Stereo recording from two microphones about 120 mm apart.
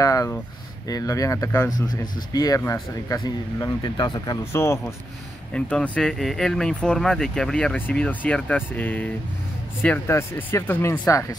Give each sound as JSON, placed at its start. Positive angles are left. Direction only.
{"t": 0.0, "sound": "speech", "side_deg": 30}
{"t": 4.5, "sound": "speech", "side_deg": 20}
{"t": 5.5, "sound": "speech", "side_deg": 5}